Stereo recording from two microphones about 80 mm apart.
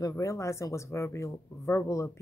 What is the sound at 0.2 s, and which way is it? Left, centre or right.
Speech, left.